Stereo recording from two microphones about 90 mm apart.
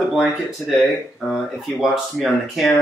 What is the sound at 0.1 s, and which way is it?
Speech, centre (ahead or behind).